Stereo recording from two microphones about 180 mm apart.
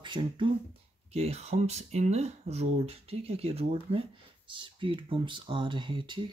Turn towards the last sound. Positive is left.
turn(degrees=-25)  # may be behind; listen again after turning